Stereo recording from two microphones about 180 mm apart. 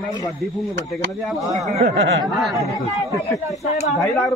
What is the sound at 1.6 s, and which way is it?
Speech, 35° right (ahead or behind).